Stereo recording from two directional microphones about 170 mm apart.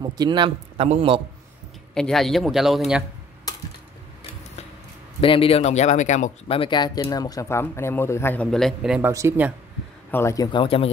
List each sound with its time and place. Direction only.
0.2 s a man's voice: 25° right (ahead or behind)
0.7 s a man's voice: 35° right (ahead or behind)
2.0 s speech: centre (ahead or behind)
5.2 s speech: 30° left (ahead or behind); by 8.5 s 15° left (ahead or behind)
8.5 s speech: centre (ahead or behind)
9.1 s speech: 15° right (ahead or behind)
10.1 s speech: 20° left (ahead or behind)